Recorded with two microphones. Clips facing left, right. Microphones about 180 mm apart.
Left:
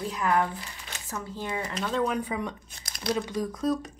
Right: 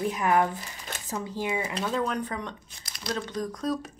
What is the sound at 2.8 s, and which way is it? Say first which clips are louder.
Crumpling: left 4 dB; 45° left (ahead or behind).